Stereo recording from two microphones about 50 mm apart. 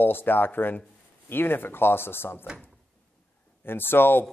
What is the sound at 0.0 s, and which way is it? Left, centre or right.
Speech, left.